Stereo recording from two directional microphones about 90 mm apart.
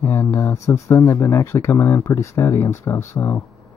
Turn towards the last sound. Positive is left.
turn(degrees=25)  # may be behind; listen again after turning